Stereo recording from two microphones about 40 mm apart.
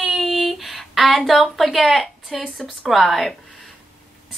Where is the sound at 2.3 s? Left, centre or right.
Centre.